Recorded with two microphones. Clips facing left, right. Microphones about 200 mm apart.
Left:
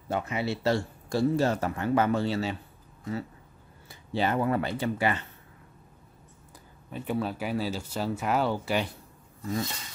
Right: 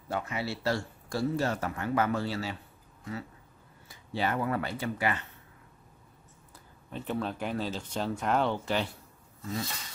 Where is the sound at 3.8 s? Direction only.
25° left (ahead or behind).